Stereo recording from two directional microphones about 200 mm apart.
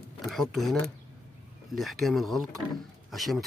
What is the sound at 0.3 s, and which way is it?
Speech, centre (ahead or behind).